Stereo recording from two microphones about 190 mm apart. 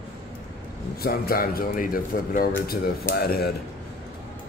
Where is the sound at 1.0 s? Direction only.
50° left (ahead or behind).